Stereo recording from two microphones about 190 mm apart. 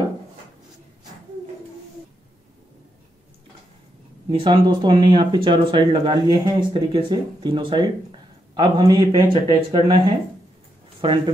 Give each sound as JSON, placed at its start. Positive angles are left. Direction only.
{"t": 4.3, "sound": "speech", "side_deg": -25}